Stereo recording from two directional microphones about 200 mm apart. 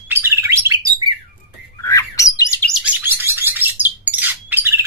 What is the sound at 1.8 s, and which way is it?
Bird, 15° left (ahead or behind).